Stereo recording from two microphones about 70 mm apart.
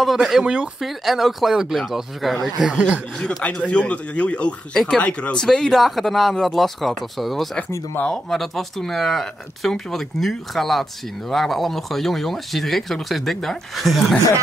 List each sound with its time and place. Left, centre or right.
0.0 s speech: centre